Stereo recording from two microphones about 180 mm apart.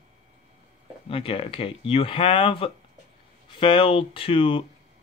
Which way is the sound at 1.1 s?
30° left (ahead or behind).